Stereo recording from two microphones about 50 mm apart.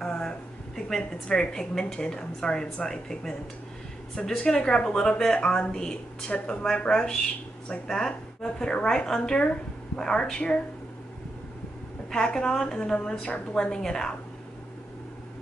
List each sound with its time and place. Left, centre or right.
0.0 s a sound: centre
0.7 s a woman's voice: centre
4.4 s a woman's voice: centre
12.1 s a woman's voice: centre